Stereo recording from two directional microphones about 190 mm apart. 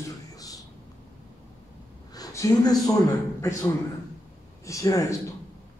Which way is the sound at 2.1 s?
20° left (ahead or behind).